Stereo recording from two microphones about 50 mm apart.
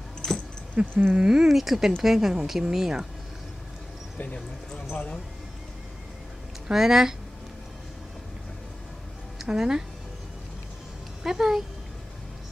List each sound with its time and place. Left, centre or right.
0.2 s dog: centre
0.8 s a sound: right
1.1 s a woman's voice: centre
6.7 s a woman's voice: centre
9.5 s a woman's voice: centre
11.2 s a woman's voice: centre